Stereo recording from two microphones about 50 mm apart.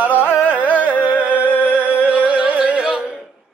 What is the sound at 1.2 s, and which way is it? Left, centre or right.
Music, right.